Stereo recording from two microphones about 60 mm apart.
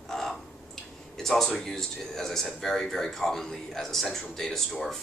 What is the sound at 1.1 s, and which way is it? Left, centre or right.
Speech, centre.